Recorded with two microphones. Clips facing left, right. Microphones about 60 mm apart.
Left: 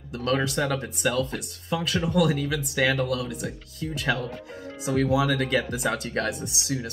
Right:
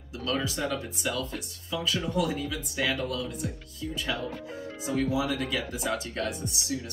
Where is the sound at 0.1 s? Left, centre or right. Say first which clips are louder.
Left 5 dB; left.